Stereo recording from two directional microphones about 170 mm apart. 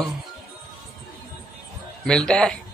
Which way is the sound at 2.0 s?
5° left (ahead or behind).